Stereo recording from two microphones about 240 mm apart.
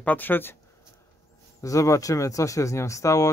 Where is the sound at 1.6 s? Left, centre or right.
Centre.